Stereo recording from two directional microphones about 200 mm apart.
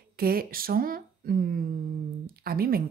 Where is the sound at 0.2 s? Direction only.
50° right (ahead or behind).